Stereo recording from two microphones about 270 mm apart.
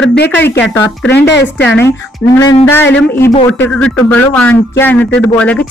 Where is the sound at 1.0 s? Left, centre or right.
Left.